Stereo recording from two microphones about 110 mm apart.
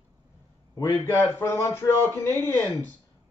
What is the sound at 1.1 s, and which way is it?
Speech, 20° left (ahead or behind).